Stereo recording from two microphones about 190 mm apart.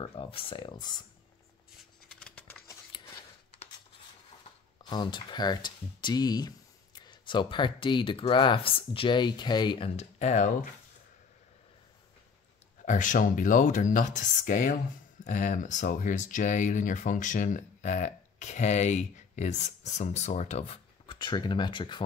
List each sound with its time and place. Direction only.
0.0 s speech: 30° left (ahead or behind)
2.0 s a sound: 5° left (ahead or behind)
4.8 s speech: 25° left (ahead or behind)
12.8 s speech: 45° left (ahead or behind); by 22.0 s 25° left (ahead or behind)